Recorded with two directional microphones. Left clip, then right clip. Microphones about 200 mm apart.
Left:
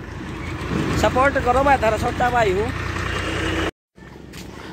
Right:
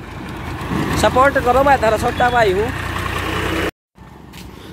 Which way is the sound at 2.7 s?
45° right (ahead or behind).